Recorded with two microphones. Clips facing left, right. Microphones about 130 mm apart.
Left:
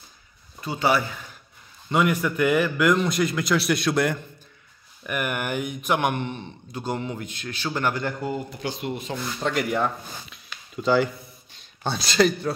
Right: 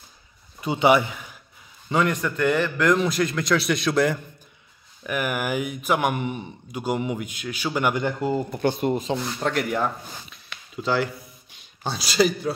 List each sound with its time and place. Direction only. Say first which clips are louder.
0.6 s speech: right 4 dB; 20° right (ahead or behind)
1.9 s a man's voice: left 1 dB; 5° left (ahead or behind); by 8.4 s 20° right (ahead or behind)
8.5 s speech: right 7 dB; 50° right (ahead or behind)
9.4 s a man's voice: left 2 dB; centre (ahead or behind)